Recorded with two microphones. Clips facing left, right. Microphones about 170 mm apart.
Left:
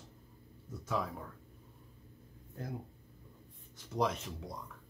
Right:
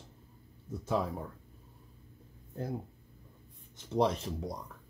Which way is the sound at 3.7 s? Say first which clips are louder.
Right 5 dB; 30° right (ahead or behind).